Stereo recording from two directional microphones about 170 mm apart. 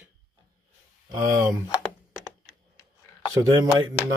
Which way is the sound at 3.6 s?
25° right (ahead or behind).